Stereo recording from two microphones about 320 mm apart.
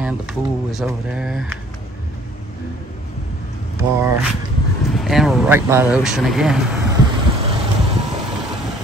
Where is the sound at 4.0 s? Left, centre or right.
Centre.